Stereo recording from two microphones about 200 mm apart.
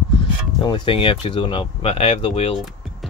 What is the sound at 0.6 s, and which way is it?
Speech, 25° left (ahead or behind).